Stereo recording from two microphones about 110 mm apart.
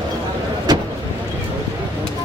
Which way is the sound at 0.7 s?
40° right (ahead or behind).